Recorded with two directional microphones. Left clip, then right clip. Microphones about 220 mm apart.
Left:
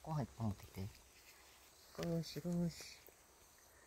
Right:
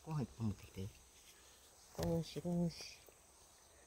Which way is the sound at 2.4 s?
5° left (ahead or behind).